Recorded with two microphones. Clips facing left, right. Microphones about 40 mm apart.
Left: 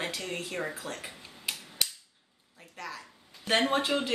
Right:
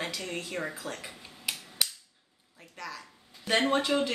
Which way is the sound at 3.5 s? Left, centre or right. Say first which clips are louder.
Even; centre.